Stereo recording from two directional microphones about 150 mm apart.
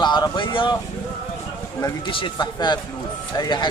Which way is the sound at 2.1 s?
35° left (ahead or behind).